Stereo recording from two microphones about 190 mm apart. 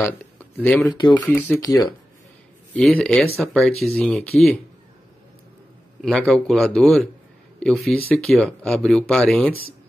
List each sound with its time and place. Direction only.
0.0 s speech: 10° left (ahead or behind)
0.9 s speech: 25° left (ahead or behind)
1.3 s speech: 15° left (ahead or behind)
2.7 s speech: 5° left (ahead or behind)
5.9 s speech: centre (ahead or behind)